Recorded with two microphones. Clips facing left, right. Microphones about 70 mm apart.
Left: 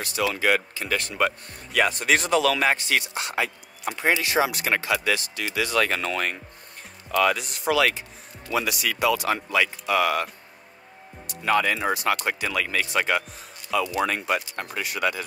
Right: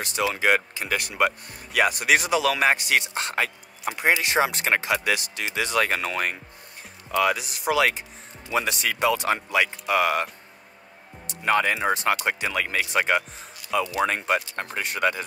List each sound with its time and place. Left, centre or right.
0.0 s speech: right; by 2.6 s centre
2.6 s speech: centre
3.2 s speech: right
3.8 s speech: centre
4.1 s speech: right
4.4 s speech: right; by 7.7 s centre
7.7 s speech: centre
8.5 s speech: right
11.2 s speech: right
14.6 s speech: right